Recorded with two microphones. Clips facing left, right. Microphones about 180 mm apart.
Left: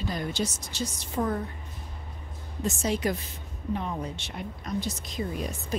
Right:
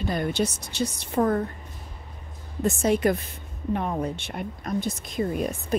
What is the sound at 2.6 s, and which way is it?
A woman's voice, 55° right (ahead or behind).